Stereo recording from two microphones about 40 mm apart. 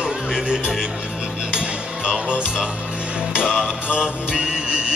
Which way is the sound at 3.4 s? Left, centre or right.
Centre.